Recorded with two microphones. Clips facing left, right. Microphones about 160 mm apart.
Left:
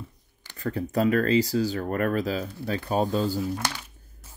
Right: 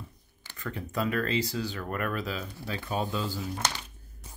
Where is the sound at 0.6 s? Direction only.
40° left (ahead or behind).